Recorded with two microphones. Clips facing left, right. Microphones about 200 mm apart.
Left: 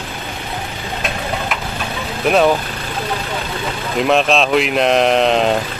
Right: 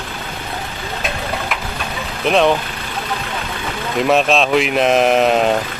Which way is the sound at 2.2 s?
5° left (ahead or behind).